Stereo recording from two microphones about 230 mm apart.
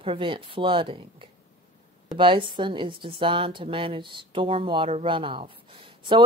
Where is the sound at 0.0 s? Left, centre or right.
Right.